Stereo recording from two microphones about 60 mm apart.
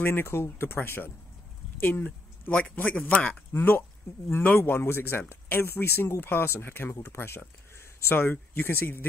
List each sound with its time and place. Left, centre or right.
0.0 s speech: left
1.8 s a sound: left
2.6 s a man's voice: left
3.5 s speech: left